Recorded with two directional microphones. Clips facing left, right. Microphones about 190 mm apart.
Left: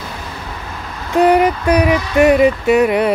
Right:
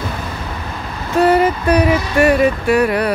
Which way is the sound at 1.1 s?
15° left (ahead or behind).